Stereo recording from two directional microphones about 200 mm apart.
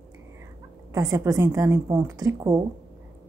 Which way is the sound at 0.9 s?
15° right (ahead or behind).